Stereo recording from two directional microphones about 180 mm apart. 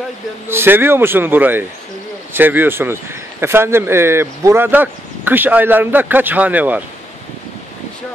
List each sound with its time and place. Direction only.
0.5 s speech: 10° right (ahead or behind)